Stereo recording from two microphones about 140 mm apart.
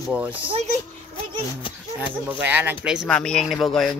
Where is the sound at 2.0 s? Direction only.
10° right (ahead or behind).